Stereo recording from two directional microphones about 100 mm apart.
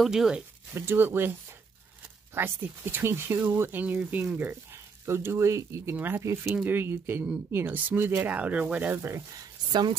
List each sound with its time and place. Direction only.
0.0 s speech: 5° right (ahead or behind)
0.7 s speech: 20° right (ahead or behind)
2.3 s speech: 20° right (ahead or behind)
8.9 s speech: 25° right (ahead or behind)
9.4 s speech: 50° right (ahead or behind)